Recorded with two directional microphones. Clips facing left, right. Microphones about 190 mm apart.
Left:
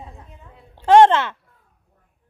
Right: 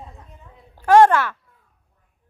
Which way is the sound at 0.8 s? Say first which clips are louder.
Left 1 dB; 20° left (ahead or behind).